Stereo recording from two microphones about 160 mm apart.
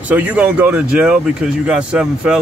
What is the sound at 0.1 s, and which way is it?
Speech, 10° right (ahead or behind).